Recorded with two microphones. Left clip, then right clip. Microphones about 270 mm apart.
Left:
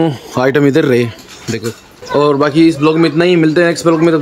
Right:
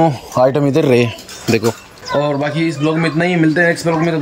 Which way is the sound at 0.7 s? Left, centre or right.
Centre.